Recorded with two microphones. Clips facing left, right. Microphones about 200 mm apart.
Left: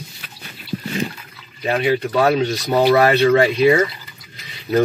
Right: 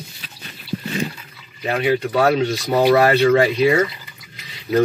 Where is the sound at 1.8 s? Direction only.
10° right (ahead or behind).